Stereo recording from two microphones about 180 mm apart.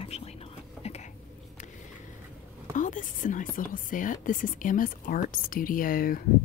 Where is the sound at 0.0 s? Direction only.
35° left (ahead or behind).